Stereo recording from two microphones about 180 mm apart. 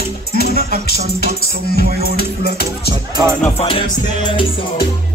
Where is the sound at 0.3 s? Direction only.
60° left (ahead or behind).